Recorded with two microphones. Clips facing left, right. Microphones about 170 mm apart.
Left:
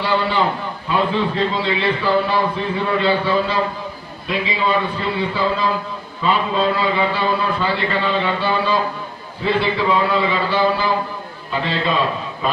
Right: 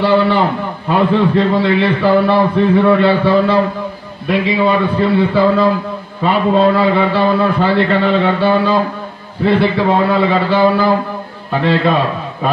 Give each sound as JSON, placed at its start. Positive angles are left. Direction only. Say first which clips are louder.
{"t": 0.0, "sound": "a man's voice", "louder": "right 7 dB", "side_deg": -60}